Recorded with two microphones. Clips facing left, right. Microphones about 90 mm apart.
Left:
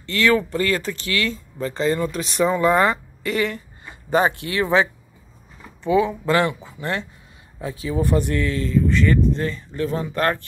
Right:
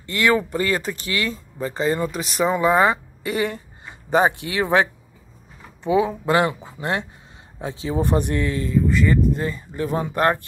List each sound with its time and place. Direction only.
0.0 s speech: 20° right (ahead or behind)
5.9 s speech: 25° right (ahead or behind)